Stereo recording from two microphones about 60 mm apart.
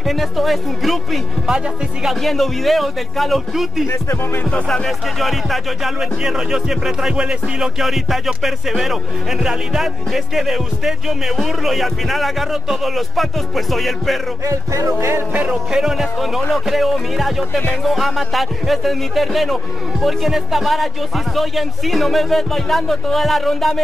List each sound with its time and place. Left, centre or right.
0.0 s speech: centre
3.8 s music: left
4.5 s speech: centre
4.8 s speech: centre
14.4 s music: right
15.3 s speech: centre